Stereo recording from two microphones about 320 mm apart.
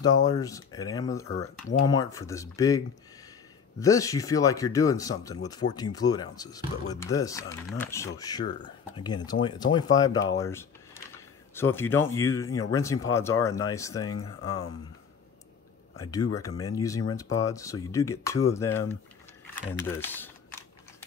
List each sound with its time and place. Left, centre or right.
0.0 s speech: centre
3.8 s speech: centre
14.1 s speech: left
16.3 s speech: centre